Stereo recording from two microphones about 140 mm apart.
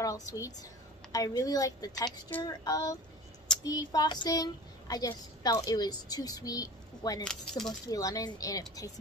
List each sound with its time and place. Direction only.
0.0 s a woman's voice: 25° left (ahead or behind)
7.2 s speech: 5° left (ahead or behind)
7.9 s a woman's voice: 25° left (ahead or behind)